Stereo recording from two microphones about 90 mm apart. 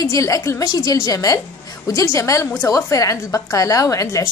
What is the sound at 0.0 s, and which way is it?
A woman's voice, 35° left (ahead or behind).